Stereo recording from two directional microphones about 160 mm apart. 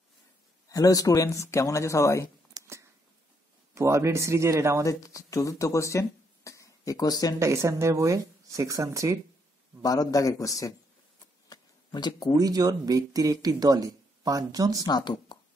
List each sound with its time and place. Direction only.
0.7 s speech: 20° left (ahead or behind)
2.6 s a sound: 25° right (ahead or behind)
3.7 s speech: 20° right (ahead or behind)
4.8 s speech: 20° left (ahead or behind)
7.3 s speech: 15° right (ahead or behind)
9.8 s speech: 25° left (ahead or behind)
11.4 s a sound: 25° left (ahead or behind)
12.4 s speech: 25° right (ahead or behind)
14.9 s speech: 25° left (ahead or behind)